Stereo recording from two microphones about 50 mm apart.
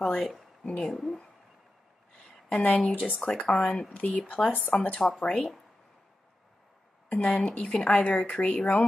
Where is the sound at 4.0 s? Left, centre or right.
Left.